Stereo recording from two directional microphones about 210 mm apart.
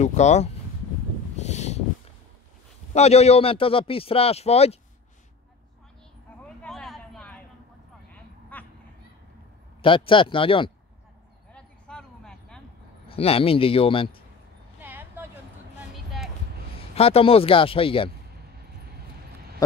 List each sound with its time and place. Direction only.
0.0 s speech: 35° left (ahead or behind)
1.4 s a sound: 35° left (ahead or behind)
2.9 s a man's voice: 30° left (ahead or behind)
6.4 s a sound: 5° left (ahead or behind)
9.8 s a man's voice: 25° left (ahead or behind)
11.5 s a sound: 5° left (ahead or behind)
13.1 s a man's voice: 25° left (ahead or behind)
14.8 s vehicle: 10° right (ahead or behind)
16.7 s speech: 30° left (ahead or behind)